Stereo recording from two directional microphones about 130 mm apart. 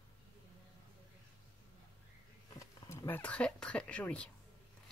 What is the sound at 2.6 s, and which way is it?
Speech, 25° left (ahead or behind).